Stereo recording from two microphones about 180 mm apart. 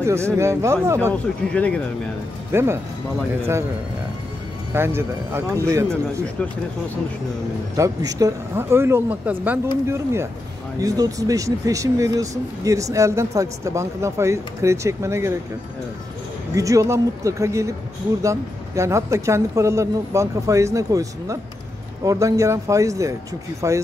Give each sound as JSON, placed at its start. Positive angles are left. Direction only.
{"t": 0.0, "sound": "speech", "side_deg": -15}
{"t": 1.5, "sound": "speech", "side_deg": 5}
{"t": 2.5, "sound": "speech", "side_deg": -15}
{"t": 4.7, "sound": "speech", "side_deg": -15}
{"t": 7.7, "sound": "speech", "side_deg": -20}
{"t": 16.5, "sound": "speech", "side_deg": -20}